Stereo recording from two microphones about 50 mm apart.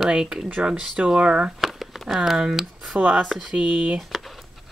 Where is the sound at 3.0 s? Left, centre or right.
Right.